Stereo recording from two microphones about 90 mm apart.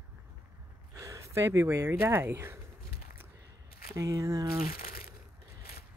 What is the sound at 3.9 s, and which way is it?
Speech, 35° right (ahead or behind).